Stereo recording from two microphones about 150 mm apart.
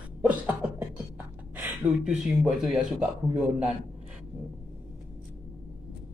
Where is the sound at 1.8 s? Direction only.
5° right (ahead or behind).